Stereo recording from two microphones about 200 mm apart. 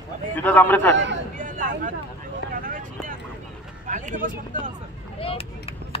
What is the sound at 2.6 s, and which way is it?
Vehicle, 40° right (ahead or behind).